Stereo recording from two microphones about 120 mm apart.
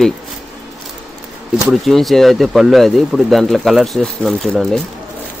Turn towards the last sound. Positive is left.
turn(degrees=0)  # may be behind; listen again after turning